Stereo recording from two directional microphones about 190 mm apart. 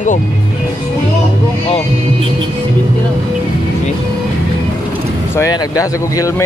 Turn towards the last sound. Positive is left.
turn(degrees=15)  # may be behind; listen again after turning